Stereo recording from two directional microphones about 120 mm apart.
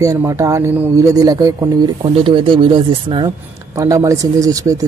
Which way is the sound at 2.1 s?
45° right (ahead or behind).